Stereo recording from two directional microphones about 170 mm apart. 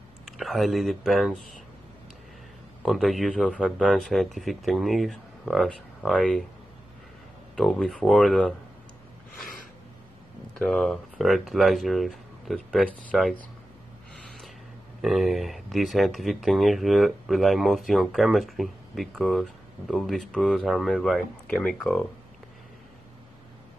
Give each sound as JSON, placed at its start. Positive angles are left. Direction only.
{"t": 0.2, "sound": "speech", "side_deg": 0}
{"t": 2.8, "sound": "speech", "side_deg": 0}
{"t": 7.5, "sound": "speech", "side_deg": 5}
{"t": 10.5, "sound": "speech", "side_deg": 5}
{"t": 14.1, "sound": "gasp", "side_deg": 0}
{"t": 15.0, "sound": "speech", "side_deg": 0}